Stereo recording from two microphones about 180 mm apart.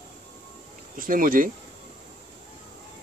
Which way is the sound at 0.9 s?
50° right (ahead or behind).